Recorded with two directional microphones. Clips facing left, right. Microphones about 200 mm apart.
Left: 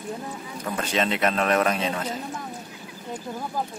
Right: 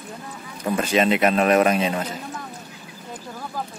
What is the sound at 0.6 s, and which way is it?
A man's voice, 10° right (ahead or behind).